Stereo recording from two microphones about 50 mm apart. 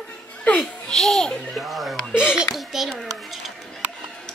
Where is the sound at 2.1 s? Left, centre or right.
Centre.